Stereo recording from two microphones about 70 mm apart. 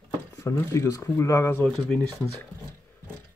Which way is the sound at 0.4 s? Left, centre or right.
Left.